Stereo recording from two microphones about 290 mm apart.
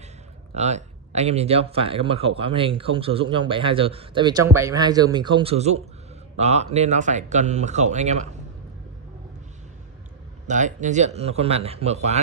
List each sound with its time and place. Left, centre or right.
0.6 s speech: right
10.4 s speech: right